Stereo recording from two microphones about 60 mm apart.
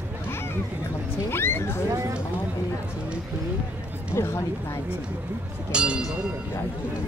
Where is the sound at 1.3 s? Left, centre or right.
Left.